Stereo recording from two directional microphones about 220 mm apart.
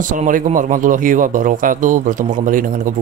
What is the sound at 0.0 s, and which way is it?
Speech, 35° right (ahead or behind).